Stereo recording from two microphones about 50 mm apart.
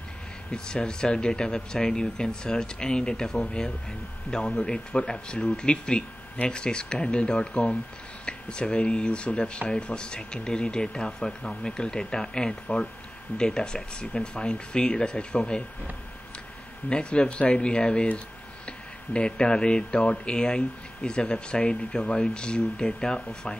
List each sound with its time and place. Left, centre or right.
0.5 s speech: centre
16.9 s speech: left